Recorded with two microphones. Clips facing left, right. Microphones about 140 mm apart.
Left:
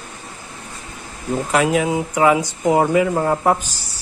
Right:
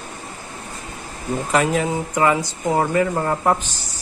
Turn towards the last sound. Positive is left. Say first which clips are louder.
# left 2 dB
turn(degrees=5)  # may be behind; listen again after turning